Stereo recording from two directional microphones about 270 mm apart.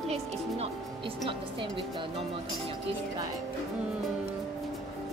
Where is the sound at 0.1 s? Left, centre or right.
Right.